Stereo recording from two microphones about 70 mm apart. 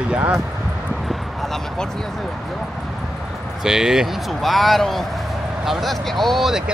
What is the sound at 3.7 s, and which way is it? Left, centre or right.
Speech, centre.